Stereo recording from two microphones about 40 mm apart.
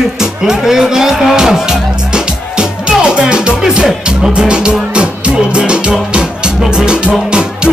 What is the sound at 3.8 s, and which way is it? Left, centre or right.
Speech, centre.